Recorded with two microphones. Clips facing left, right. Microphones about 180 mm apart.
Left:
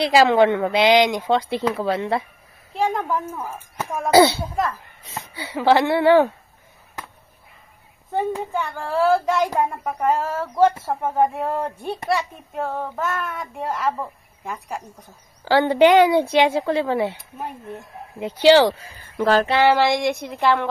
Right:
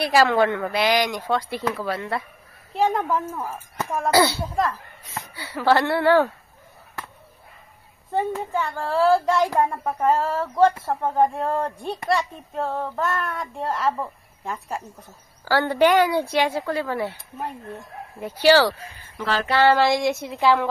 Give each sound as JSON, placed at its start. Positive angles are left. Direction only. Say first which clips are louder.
{"t": 0.0, "sound": "speech", "louder": "left 3 dB", "side_deg": 20}
{"t": 2.7, "sound": "speech", "louder": "right 1 dB", "side_deg": -5}
{"t": 4.1, "sound": "speech", "louder": "left 6 dB", "side_deg": 25}
{"t": 8.5, "sound": "speech", "louder": "right 1 dB", "side_deg": 0}
{"t": 15.4, "sound": "speech", "louder": "left 4 dB", "side_deg": 20}
{"t": 18.2, "sound": "speech", "louder": "left 3 dB", "side_deg": 20}
{"t": 19.1, "sound": "a sound", "louder": "left 8 dB", "side_deg": 45}
{"t": 19.8, "sound": "speech", "louder": "left 1 dB", "side_deg": 0}